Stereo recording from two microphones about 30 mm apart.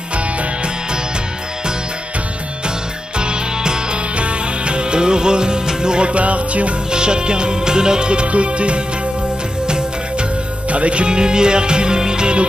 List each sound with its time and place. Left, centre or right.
3.2 s music: right
6.1 s music: right
6.9 s music: right
9.7 s music: right
10.7 s speech: right
12.0 s music: right